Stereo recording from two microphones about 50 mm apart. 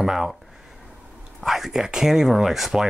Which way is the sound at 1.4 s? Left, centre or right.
Centre.